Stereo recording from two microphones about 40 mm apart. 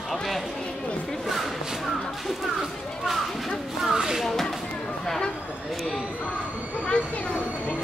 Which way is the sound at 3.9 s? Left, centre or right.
Centre.